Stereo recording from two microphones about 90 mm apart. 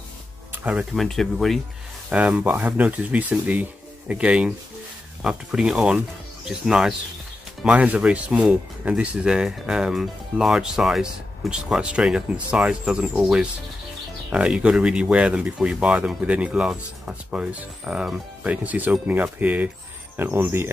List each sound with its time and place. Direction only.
0.5 s music: 15° right (ahead or behind)
0.9 s speech: 5° left (ahead or behind)
2.0 s speech: 15° right (ahead or behind)